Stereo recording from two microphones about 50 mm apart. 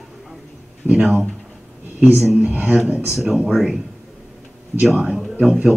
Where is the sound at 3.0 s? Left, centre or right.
Centre.